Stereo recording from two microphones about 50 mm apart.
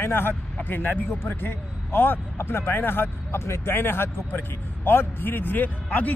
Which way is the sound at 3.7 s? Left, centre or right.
Left.